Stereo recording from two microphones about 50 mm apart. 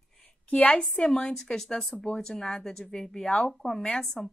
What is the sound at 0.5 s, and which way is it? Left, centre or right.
Speech, left.